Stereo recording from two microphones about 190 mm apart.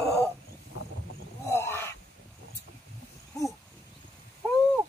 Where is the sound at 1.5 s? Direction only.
15° left (ahead or behind).